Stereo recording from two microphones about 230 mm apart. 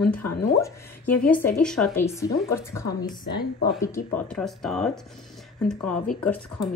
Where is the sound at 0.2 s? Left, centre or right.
Left.